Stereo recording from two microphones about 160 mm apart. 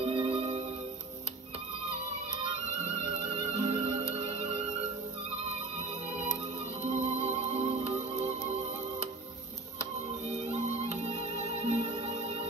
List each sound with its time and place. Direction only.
0.0 s music: 35° right (ahead or behind)
3.4 s music: 40° right (ahead or behind)
6.9 s music: 45° right (ahead or behind)
10.2 s music: 40° right (ahead or behind)